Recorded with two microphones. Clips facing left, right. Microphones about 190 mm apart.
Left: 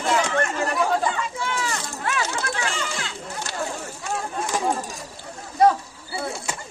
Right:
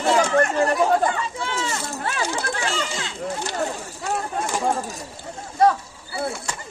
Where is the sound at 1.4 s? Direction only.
30° right (ahead or behind).